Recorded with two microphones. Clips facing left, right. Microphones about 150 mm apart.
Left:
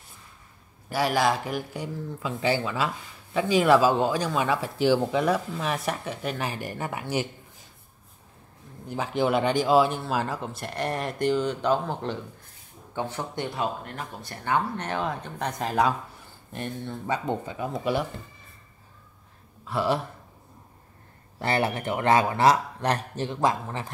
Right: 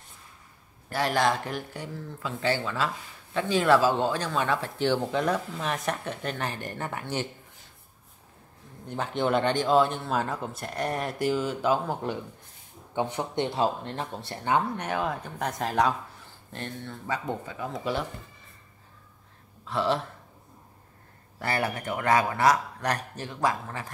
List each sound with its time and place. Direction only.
0.8 s speech: 10° left (ahead or behind)
8.8 s a man's voice: 5° left (ahead or behind)
16.5 s a man's voice: 15° left (ahead or behind)
19.6 s speech: 10° left (ahead or behind)
21.4 s a man's voice: 25° left (ahead or behind)